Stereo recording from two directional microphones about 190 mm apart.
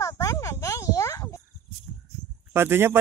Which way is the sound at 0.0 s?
15° left (ahead or behind).